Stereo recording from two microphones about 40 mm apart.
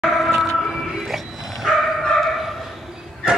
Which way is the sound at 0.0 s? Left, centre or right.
Centre.